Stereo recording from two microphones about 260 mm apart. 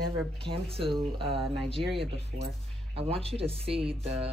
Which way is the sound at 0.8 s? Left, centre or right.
Centre.